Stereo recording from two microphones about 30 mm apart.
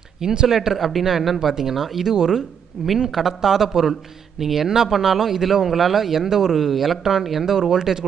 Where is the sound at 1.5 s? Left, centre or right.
Centre.